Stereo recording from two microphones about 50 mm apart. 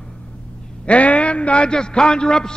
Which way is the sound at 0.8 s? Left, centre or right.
Left.